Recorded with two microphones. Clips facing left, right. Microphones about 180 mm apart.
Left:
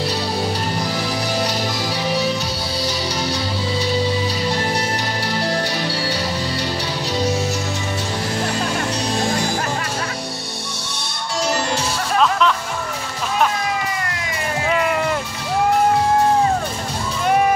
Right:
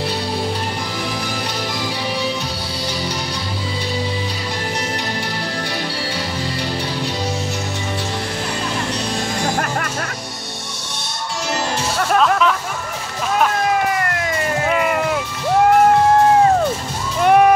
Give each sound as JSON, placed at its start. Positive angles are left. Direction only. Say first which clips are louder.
{"t": 12.2, "sound": "music", "louder": "even", "side_deg": -5}
{"t": 14.7, "sound": "a sound", "louder": "left 1 dB", "side_deg": 0}
{"t": 17.2, "sound": "music", "louder": "right 5 dB", "side_deg": -55}